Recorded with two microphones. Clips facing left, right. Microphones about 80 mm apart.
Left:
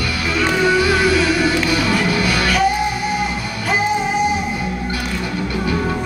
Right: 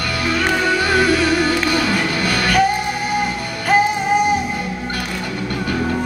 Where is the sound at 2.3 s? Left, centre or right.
Right.